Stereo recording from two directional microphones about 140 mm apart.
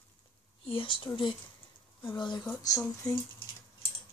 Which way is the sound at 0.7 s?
40° left (ahead or behind).